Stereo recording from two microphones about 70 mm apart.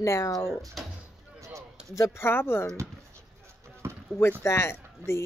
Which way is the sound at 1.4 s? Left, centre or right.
Right.